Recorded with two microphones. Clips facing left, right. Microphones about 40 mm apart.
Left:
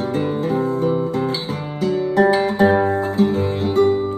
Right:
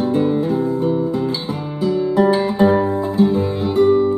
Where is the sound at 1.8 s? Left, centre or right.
Left.